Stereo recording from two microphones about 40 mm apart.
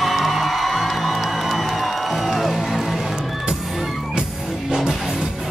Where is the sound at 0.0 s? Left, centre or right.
Centre.